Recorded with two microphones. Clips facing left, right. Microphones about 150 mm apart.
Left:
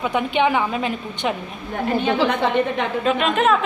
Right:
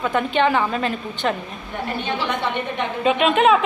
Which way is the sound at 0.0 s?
15° left (ahead or behind).